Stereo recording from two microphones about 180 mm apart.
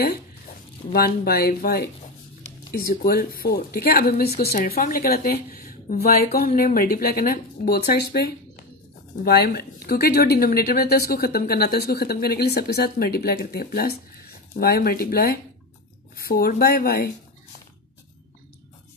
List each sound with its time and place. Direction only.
0.9 s speech: 60° left (ahead or behind)